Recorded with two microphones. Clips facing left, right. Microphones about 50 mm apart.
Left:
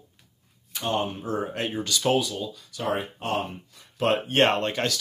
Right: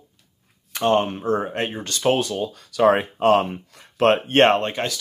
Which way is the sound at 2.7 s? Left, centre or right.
Right.